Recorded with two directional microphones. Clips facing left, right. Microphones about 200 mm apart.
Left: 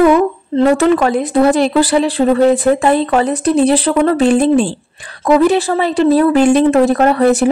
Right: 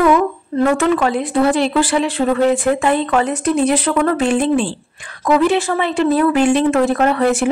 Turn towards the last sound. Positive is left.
turn(degrees=35)  # may be behind; listen again after turning